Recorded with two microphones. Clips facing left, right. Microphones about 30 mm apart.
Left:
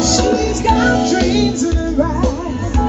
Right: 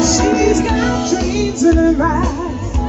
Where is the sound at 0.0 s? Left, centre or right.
Left.